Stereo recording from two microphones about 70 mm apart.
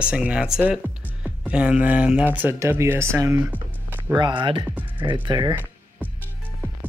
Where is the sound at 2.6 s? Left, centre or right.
Right.